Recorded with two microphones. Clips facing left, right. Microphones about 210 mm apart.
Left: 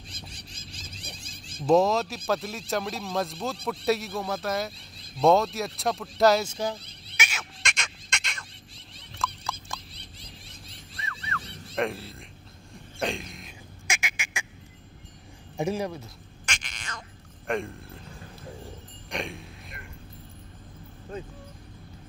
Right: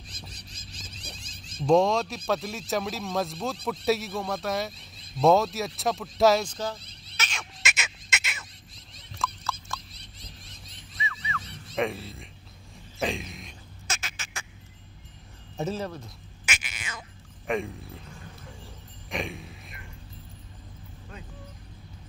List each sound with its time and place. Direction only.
0.3 s music: 30° left (ahead or behind)
1.6 s speech: 5° left (ahead or behind)
7.6 s fowl: 5° right (ahead or behind)
9.2 s turkey: centre (ahead or behind)
11.0 s music: centre (ahead or behind)
11.7 s speech: centre (ahead or behind)
13.0 s a sound: centre (ahead or behind)
13.8 s goose: 10° left (ahead or behind)
15.5 s speech: 15° left (ahead or behind)
16.4 s a sound: 5° right (ahead or behind)
17.5 s speech: centre (ahead or behind)
19.0 s a sound: centre (ahead or behind)